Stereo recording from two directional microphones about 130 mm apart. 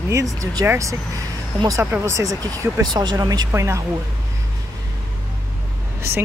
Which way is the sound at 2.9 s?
35° right (ahead or behind).